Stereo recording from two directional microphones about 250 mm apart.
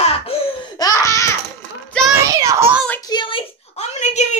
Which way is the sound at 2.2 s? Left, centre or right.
Centre.